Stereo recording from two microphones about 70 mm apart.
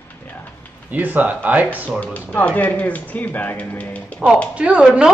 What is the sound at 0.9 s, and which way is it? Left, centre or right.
Speech, right.